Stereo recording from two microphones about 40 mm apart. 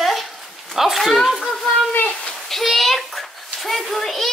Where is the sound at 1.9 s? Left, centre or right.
Left.